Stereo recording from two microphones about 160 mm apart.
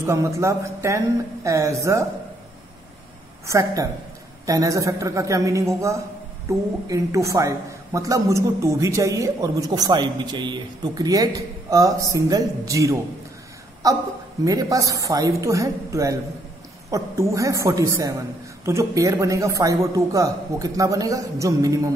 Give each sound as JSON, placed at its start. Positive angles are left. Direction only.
{"t": 0.0, "sound": "a woman's voice", "side_deg": -20}
{"t": 3.4, "sound": "a woman's voice", "side_deg": -20}